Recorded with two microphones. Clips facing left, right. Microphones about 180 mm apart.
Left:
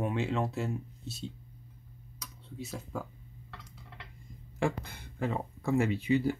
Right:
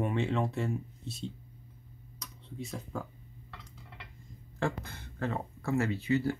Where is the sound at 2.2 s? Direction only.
Centre (ahead or behind).